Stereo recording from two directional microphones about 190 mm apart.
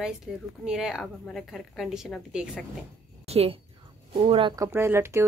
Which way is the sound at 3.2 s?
30° right (ahead or behind).